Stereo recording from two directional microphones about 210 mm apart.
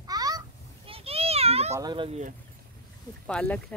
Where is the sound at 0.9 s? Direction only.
30° right (ahead or behind).